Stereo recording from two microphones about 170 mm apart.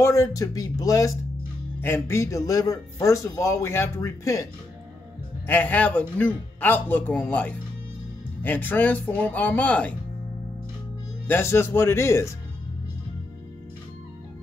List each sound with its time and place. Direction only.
0.0 s a man's voice: 15° left (ahead or behind)
5.5 s a man's voice: 10° left (ahead or behind)
11.2 s a man's voice: 15° left (ahead or behind)